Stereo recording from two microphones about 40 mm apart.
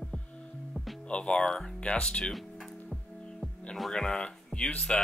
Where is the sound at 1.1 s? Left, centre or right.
Left.